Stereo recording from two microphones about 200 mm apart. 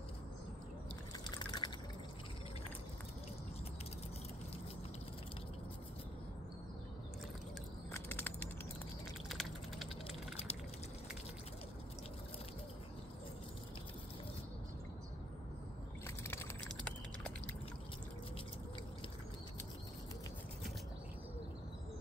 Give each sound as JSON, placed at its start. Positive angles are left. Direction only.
{"t": 1.3, "sound": "fill", "side_deg": 20}
{"t": 8.1, "sound": "a sound", "side_deg": 10}
{"t": 9.3, "sound": "typing", "side_deg": 0}
{"t": 16.3, "sound": "typing", "side_deg": 10}